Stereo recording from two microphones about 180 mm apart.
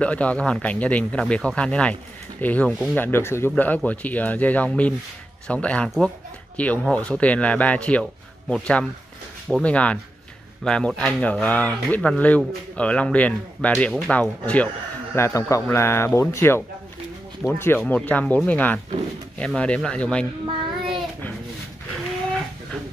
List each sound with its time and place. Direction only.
0.0 s speech: 5° left (ahead or behind)
20.4 s child singing: 25° right (ahead or behind)